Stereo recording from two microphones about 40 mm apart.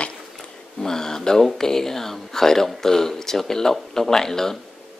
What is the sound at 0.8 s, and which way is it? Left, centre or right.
Speech, centre.